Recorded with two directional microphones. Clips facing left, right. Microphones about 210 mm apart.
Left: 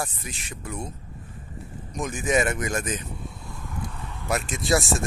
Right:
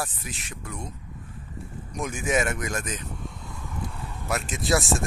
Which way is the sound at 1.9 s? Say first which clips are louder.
Left 2 dB; 10° right (ahead or behind).